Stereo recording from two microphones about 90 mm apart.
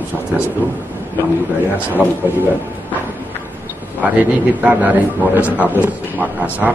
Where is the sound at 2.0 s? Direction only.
5° left (ahead or behind).